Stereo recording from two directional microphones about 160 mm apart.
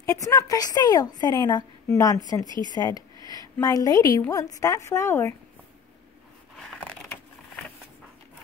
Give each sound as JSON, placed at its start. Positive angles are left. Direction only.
{"t": 0.0, "sound": "a woman's voice", "side_deg": 20}
{"t": 2.7, "sound": "a sound", "side_deg": 25}
{"t": 3.5, "sound": "a woman's voice", "side_deg": 20}